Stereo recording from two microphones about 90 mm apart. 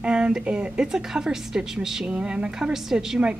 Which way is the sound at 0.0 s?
10° right (ahead or behind).